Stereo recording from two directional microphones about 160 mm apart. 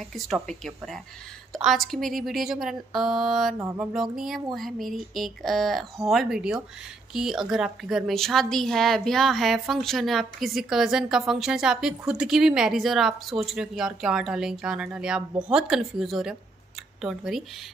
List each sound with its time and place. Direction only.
0.1 s a woman's voice: centre (ahead or behind)
3.5 s a sound: 15° right (ahead or behind)
3.9 s a woman's voice: centre (ahead or behind)